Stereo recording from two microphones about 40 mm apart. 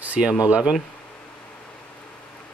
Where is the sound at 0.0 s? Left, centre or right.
Right.